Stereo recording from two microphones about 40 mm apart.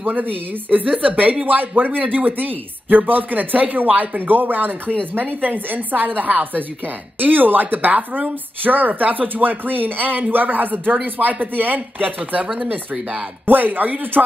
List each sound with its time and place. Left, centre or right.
0.0 s speech: right
1.0 s speech: right
1.4 s speech: right
13.5 s speech: right